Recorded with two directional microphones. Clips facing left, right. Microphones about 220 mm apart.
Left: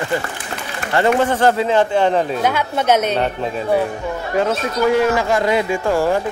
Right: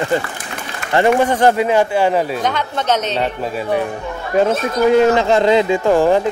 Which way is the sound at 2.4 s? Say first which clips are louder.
Left 2 dB; 10° left (ahead or behind).